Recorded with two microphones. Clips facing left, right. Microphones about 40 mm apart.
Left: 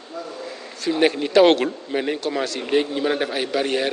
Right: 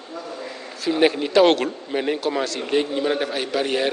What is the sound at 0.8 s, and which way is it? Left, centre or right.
A man's voice, centre.